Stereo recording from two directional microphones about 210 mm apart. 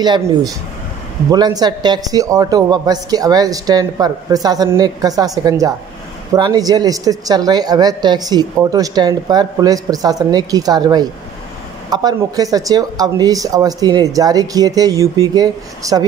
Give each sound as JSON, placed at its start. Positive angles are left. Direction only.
{"t": 0.0, "sound": "a man's voice", "side_deg": -20}